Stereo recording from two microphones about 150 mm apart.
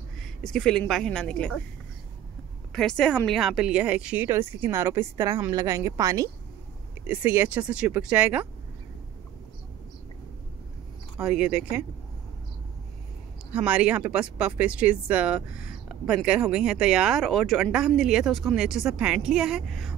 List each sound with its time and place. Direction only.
0.4 s speech: 5° left (ahead or behind)
2.7 s speech: 5° left (ahead or behind)
11.1 s speech: 5° right (ahead or behind)
13.7 s speech: 10° right (ahead or behind)